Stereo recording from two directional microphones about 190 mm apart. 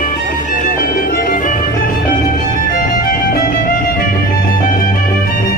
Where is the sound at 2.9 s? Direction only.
50° left (ahead or behind).